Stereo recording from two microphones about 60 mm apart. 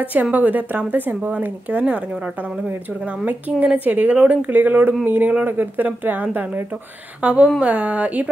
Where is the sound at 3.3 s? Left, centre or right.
Right.